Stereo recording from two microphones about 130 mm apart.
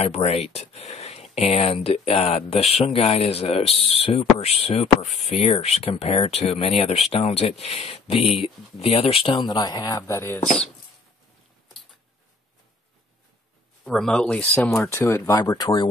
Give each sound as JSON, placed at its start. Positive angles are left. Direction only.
{"t": 0.0, "sound": "speech", "side_deg": 50}
{"t": 10.0, "sound": "speech", "side_deg": 20}
{"t": 10.4, "sound": "speech", "side_deg": 5}
{"t": 13.8, "sound": "speech", "side_deg": 5}
{"t": 14.9, "sound": "speech", "side_deg": 20}